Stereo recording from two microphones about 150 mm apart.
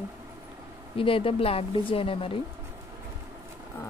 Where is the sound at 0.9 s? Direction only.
35° left (ahead or behind).